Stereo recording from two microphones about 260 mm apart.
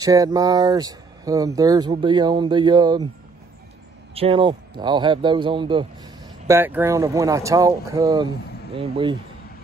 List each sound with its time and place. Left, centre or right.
0.0 s speech: centre
4.1 s speech: right